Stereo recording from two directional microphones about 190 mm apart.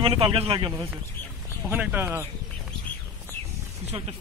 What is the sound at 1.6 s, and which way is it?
Speech, 10° right (ahead or behind).